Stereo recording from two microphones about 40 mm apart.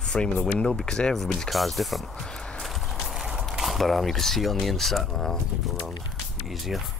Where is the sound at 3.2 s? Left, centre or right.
Centre.